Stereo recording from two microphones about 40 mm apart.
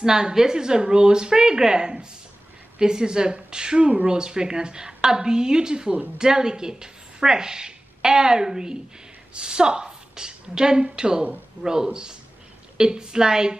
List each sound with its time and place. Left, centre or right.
0.0 s a woman's voice: centre